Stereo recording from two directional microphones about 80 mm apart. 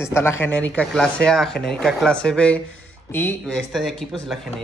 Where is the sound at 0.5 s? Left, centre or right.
Centre.